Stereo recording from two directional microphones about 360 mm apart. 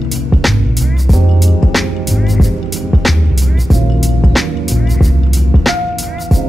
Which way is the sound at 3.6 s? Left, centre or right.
Centre.